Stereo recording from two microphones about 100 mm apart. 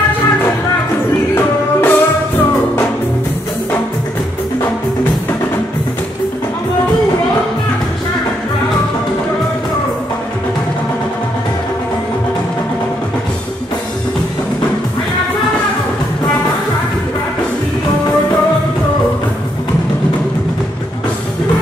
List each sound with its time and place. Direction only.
1.3 s music: 20° left (ahead or behind)